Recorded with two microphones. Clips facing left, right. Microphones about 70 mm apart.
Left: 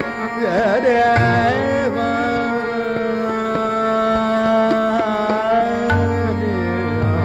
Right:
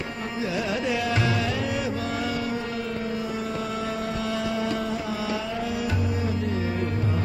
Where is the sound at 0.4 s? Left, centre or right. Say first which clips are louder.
Left 12 dB; left.